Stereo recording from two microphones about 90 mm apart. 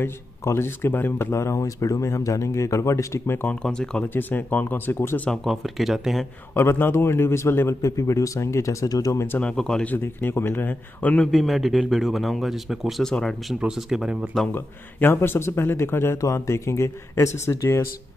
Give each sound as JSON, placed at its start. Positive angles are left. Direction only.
{"t": 0.0, "sound": "speech", "side_deg": 25}
{"t": 3.4, "sound": "speech", "side_deg": 10}
{"t": 4.0, "sound": "a man's voice", "side_deg": 20}
{"t": 5.3, "sound": "speech", "side_deg": 0}
{"t": 6.5, "sound": "a man's voice", "side_deg": 30}
{"t": 9.6, "sound": "speech", "side_deg": 5}
{"t": 9.8, "sound": "a man's voice", "side_deg": 25}
{"t": 11.3, "sound": "speech", "side_deg": 0}
{"t": 13.6, "sound": "speech", "side_deg": -5}
{"t": 14.5, "sound": "a man's voice", "side_deg": 25}